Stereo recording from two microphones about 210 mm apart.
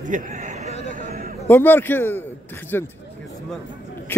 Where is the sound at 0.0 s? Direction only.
40° right (ahead or behind).